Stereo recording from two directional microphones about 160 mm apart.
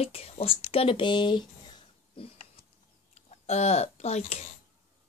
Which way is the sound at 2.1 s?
35° left (ahead or behind).